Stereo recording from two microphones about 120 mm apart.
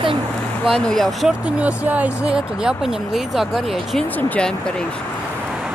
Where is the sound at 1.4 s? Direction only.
10° right (ahead or behind).